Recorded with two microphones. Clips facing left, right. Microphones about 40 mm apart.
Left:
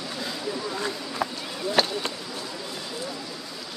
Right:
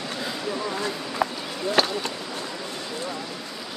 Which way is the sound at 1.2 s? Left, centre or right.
Right.